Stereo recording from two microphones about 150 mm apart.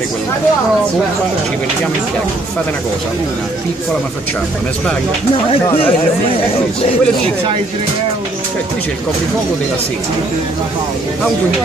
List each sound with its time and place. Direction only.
5.5 s speech: 40° left (ahead or behind)